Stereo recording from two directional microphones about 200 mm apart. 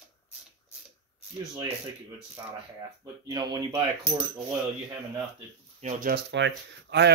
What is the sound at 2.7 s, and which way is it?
Speech, 20° right (ahead or behind).